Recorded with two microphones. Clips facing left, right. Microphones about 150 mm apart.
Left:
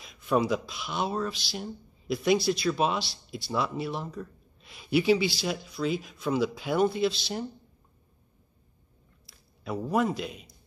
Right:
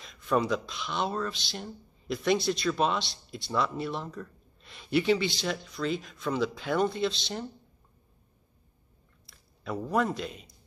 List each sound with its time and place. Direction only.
0.0 s speech: 5° left (ahead or behind)
9.6 s speech: 10° left (ahead or behind)